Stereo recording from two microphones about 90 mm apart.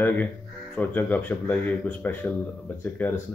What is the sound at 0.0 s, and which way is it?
Speech, 20° left (ahead or behind).